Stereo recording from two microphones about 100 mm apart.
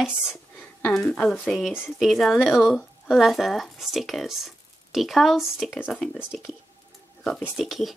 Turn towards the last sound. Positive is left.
turn(degrees=0)  # may be behind; listen again after turning